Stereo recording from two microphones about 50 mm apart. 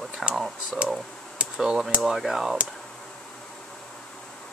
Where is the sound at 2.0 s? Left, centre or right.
Centre.